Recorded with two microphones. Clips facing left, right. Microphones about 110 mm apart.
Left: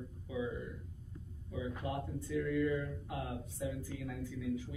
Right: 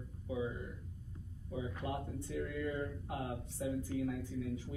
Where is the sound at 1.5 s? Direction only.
35° right (ahead or behind).